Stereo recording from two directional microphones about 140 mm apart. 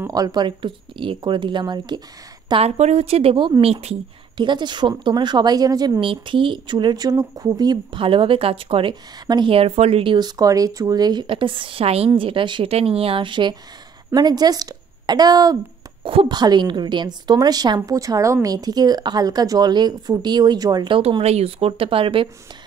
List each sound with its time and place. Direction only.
0.1 s speech: 30° right (ahead or behind)
2.5 s speech: 50° right (ahead or behind)
4.5 s speech: 30° right (ahead or behind)
10.1 s a woman's voice: 30° right (ahead or behind)
16.0 s a woman's voice: 40° right (ahead or behind)
21.2 s speech: 50° right (ahead or behind)